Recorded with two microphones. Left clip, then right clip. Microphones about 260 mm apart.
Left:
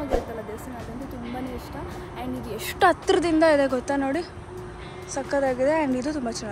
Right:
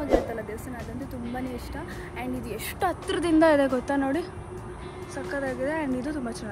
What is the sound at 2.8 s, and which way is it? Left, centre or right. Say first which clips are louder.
Speech: left 8 dB; left.